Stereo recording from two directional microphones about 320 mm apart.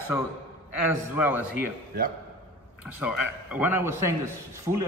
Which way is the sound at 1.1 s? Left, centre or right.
Centre.